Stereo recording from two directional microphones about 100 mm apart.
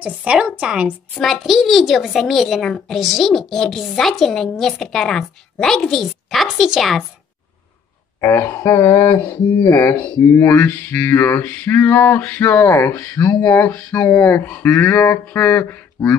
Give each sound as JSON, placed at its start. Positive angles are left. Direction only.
{"t": 0.0, "sound": "a woman's voice", "side_deg": -10}
{"t": 8.2, "sound": "speech", "side_deg": 25}